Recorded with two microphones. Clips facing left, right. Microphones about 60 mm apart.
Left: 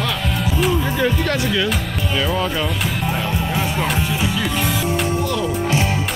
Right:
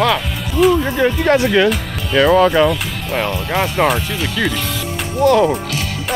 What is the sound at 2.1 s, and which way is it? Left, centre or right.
Speech, right.